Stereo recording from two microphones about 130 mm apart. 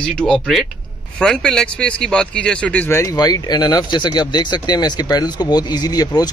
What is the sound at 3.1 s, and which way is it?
Speech, 30° left (ahead or behind).